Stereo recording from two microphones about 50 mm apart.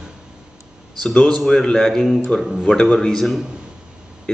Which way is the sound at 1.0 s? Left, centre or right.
Centre.